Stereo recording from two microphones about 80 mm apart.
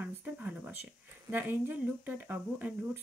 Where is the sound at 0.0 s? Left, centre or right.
Centre.